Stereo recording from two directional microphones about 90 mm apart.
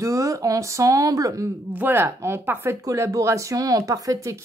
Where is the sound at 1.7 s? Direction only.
25° right (ahead or behind).